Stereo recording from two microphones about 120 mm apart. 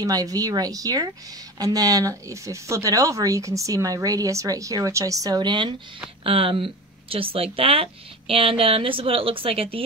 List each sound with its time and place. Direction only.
0.0 s speech: 30° right (ahead or behind); by 9.8 s 50° right (ahead or behind)